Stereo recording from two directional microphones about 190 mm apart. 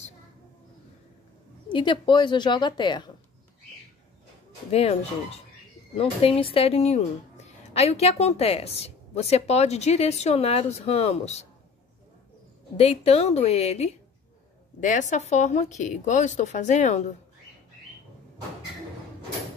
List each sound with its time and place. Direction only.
1.7 s a woman's voice: 25° left (ahead or behind)
4.6 s a woman's voice: 35° left (ahead or behind)
12.7 s a woman's voice: 35° left (ahead or behind)